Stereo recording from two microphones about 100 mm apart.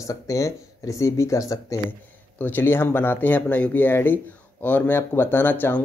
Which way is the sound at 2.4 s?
20° left (ahead or behind).